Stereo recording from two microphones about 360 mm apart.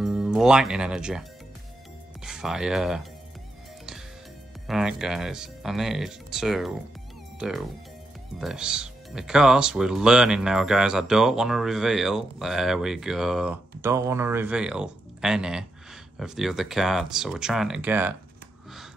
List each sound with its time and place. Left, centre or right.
0.0 s speech: centre
2.2 s speech: centre
4.6 s speech: centre